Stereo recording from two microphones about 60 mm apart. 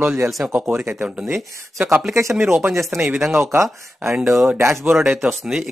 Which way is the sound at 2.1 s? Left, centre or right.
Right.